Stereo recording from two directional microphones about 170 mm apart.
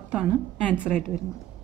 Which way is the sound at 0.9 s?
5° left (ahead or behind).